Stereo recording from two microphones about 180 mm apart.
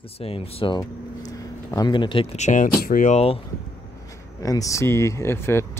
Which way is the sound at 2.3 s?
40° left (ahead or behind).